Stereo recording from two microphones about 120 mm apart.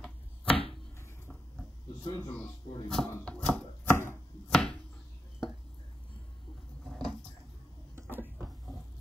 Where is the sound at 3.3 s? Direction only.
10° left (ahead or behind).